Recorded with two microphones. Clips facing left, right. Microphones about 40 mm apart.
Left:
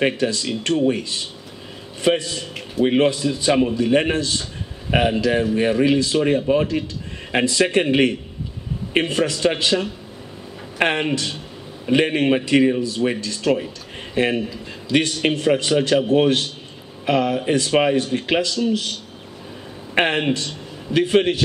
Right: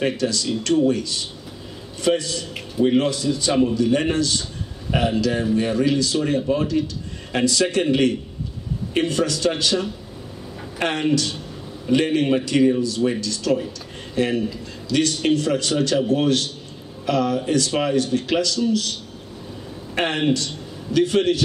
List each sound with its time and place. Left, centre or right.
0.0 s a man's voice: left
20.0 s a man's voice: left